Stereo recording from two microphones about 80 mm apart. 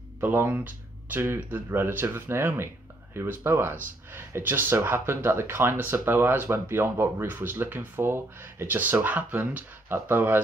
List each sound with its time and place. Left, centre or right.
0.2 s speech: right